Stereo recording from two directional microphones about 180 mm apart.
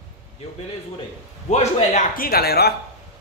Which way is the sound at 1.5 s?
40° left (ahead or behind).